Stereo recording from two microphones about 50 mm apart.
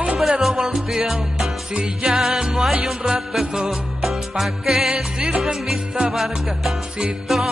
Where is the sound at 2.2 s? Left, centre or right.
Centre.